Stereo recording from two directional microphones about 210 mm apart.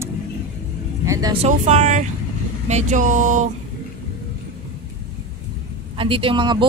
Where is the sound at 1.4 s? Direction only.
30° right (ahead or behind).